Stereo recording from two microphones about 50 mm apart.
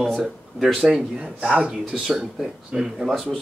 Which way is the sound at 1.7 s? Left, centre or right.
Centre.